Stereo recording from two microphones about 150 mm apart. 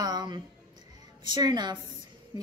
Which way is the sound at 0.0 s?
30° right (ahead or behind).